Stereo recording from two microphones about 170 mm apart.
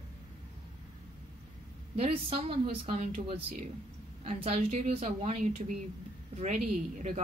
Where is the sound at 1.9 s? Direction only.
35° right (ahead or behind).